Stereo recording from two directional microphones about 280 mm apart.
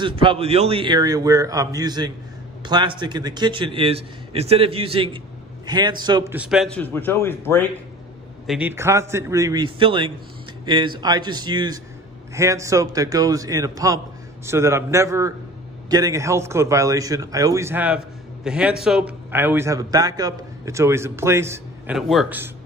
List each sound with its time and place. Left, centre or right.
0.0 s a man's voice: centre
8.5 s a man's voice: centre